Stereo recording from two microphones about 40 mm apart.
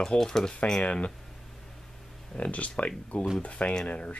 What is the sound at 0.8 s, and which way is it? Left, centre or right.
Speech, left.